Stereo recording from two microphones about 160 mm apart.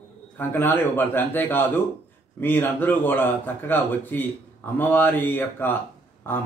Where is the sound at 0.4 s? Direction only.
10° left (ahead or behind).